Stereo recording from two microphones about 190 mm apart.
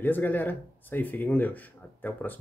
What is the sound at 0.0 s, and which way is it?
Speech, 10° left (ahead or behind).